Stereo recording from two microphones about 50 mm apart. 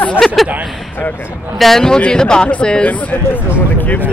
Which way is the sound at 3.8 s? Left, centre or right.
Left.